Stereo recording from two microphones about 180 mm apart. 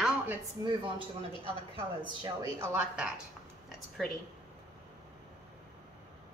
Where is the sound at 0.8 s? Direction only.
25° right (ahead or behind).